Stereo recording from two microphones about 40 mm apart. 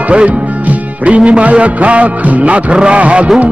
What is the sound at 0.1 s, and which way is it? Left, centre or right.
Speech, right.